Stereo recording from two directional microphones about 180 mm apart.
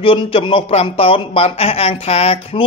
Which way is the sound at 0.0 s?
30° left (ahead or behind).